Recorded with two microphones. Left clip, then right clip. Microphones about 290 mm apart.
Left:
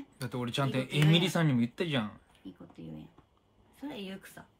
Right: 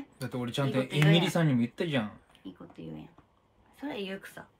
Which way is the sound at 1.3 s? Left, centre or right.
Centre.